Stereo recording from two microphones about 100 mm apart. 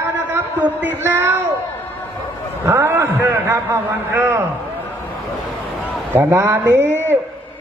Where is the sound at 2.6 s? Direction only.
25° right (ahead or behind).